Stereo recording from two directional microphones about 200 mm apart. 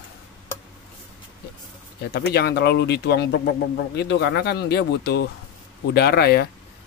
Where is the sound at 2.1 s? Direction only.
55° left (ahead or behind).